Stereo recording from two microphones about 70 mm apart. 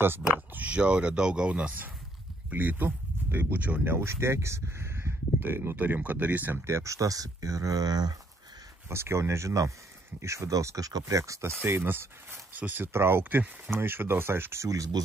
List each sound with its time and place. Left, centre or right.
0.3 s speech: right
2.5 s speech: right
8.8 s speech: right
10.9 s speech: right
11.1 s speech: right
11.6 s speech: right
13.2 s speech: right
13.7 s speech: right